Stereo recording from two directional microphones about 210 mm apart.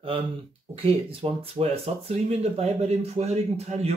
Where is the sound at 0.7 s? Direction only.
25° right (ahead or behind).